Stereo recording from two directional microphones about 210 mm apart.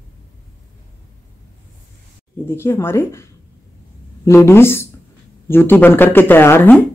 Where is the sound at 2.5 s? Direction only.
10° left (ahead or behind).